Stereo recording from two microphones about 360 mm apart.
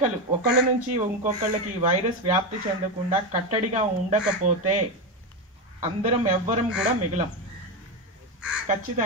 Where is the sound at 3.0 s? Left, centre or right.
Centre.